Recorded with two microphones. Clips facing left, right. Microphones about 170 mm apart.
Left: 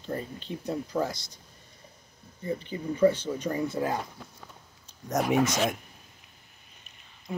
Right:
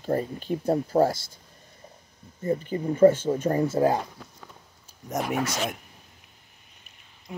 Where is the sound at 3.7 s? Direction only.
35° right (ahead or behind).